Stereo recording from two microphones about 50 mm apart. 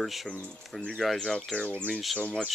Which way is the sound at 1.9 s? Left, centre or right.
Centre.